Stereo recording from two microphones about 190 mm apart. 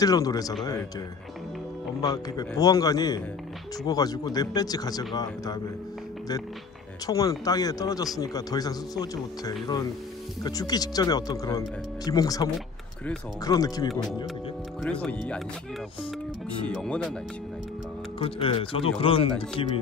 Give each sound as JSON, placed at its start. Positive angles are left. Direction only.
{"t": 0.0, "sound": "speech", "side_deg": 20}
{"t": 2.0, "sound": "speech", "side_deg": 20}
{"t": 7.1, "sound": "speech", "side_deg": 20}
{"t": 12.5, "sound": "a sound", "side_deg": 5}
{"t": 13.4, "sound": "speech", "side_deg": 20}
{"t": 14.8, "sound": "speech", "side_deg": 5}
{"t": 16.4, "sound": "speech", "side_deg": 5}
{"t": 18.2, "sound": "speech", "side_deg": 30}